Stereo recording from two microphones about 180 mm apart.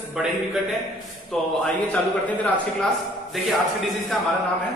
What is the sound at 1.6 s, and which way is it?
A man's voice, 10° left (ahead or behind).